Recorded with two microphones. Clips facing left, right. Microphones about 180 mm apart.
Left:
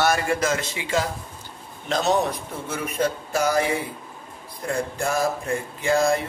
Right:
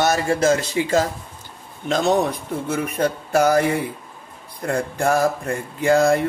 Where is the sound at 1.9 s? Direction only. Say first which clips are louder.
Right 3 dB; 55° right (ahead or behind).